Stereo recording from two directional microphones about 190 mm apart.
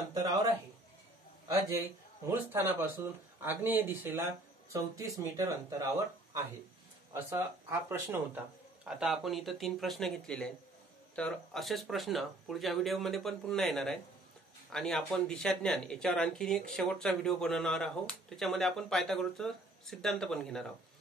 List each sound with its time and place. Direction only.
0.1 s a man's voice: 20° right (ahead or behind)
8.8 s speech: centre (ahead or behind)